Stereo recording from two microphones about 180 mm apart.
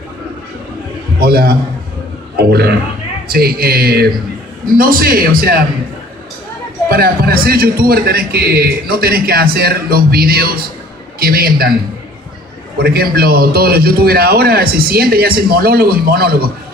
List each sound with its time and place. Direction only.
1.2 s a man's voice: 60° right (ahead or behind)
6.9 s a man's voice: 55° right (ahead or behind)
12.7 s a man's voice: 60° right (ahead or behind)